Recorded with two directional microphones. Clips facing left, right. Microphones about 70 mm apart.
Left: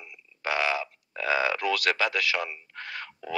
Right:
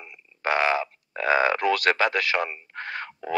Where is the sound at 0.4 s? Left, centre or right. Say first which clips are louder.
Right 5 dB; right.